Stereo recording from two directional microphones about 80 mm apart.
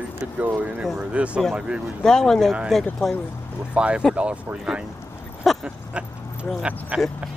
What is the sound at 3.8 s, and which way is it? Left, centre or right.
Speech, centre.